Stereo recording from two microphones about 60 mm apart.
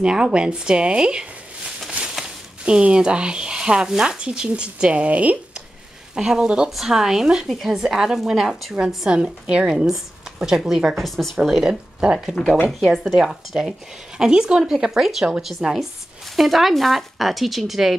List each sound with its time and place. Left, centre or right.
0.0 s a woman's voice: centre
2.6 s a woman's voice: centre
6.1 s a woman's voice: centre
11.0 s a woman's voice: centre